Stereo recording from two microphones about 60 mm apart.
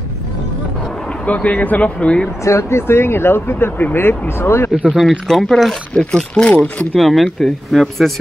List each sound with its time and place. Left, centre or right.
1.2 s speech: left
2.4 s speech: left
4.8 s speech: centre
6.5 s speech: left
7.0 s speech: centre